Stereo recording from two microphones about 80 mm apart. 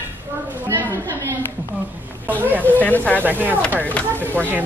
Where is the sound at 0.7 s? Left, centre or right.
Right.